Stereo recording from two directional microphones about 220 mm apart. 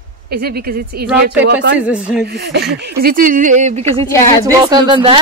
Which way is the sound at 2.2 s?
50° right (ahead or behind).